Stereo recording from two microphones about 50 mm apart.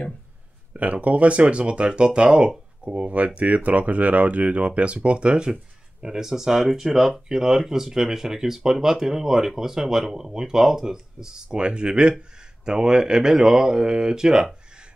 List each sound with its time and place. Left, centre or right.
0.7 s speech: right